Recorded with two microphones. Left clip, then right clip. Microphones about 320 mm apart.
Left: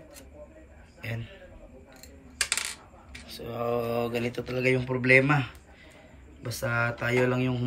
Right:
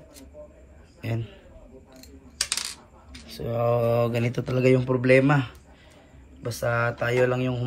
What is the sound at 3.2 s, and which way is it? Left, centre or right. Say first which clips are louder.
Mantra: right 6 dB; centre.